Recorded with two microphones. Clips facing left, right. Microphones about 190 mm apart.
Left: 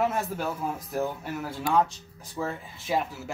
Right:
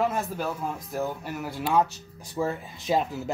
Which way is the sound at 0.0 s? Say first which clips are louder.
Even; 5° left (ahead or behind).